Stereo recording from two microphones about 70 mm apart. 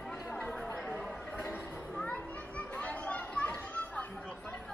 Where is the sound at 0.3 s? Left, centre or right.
Centre.